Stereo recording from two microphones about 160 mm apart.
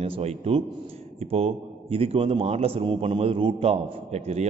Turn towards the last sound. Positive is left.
turn(degrees=-40)  # may be behind; listen again after turning